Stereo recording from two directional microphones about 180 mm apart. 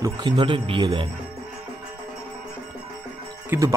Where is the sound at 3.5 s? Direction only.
15° right (ahead or behind).